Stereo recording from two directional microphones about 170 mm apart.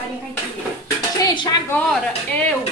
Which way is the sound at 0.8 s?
25° left (ahead or behind).